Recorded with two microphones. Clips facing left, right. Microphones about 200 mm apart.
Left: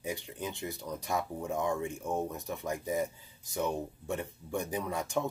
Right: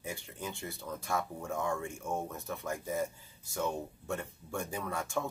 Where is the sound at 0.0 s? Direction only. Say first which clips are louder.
Left 4 dB; 15° left (ahead or behind).